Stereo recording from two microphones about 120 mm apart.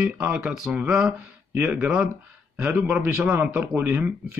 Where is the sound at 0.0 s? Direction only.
10° right (ahead or behind).